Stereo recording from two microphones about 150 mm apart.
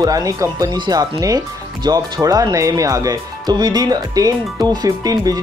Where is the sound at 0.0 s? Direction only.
25° right (ahead or behind).